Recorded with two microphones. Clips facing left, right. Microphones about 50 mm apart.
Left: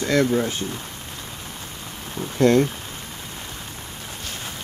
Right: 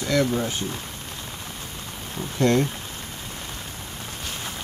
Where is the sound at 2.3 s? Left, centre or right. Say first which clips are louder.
Left 4 dB; centre.